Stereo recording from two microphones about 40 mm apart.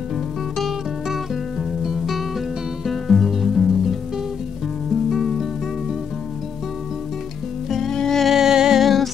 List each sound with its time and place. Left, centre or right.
0.6 s music: centre
5.1 s music: centre
7.7 s music: centre
8.3 s music: centre
8.8 s music: centre